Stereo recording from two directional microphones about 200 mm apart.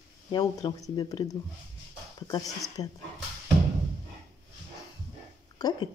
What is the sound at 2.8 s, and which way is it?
Speech, 30° left (ahead or behind).